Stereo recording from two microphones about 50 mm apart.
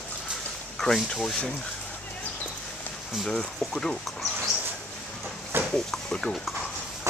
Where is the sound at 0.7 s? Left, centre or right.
Centre.